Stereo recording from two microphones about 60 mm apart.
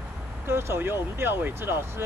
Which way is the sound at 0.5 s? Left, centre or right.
Right.